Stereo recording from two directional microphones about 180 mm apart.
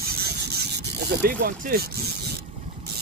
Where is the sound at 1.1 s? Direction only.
55° right (ahead or behind).